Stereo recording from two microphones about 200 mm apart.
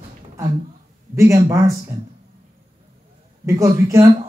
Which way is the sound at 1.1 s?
15° right (ahead or behind).